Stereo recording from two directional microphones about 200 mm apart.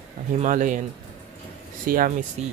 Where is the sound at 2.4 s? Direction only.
35° right (ahead or behind).